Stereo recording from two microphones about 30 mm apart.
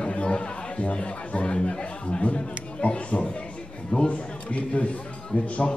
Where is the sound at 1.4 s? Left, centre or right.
Left.